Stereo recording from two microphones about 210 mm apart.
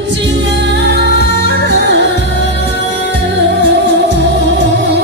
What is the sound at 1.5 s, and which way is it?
Music, 55° right (ahead or behind).